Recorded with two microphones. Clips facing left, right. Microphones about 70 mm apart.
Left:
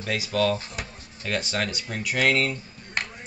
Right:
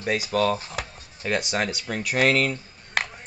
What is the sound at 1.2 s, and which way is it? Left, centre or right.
Speech, centre.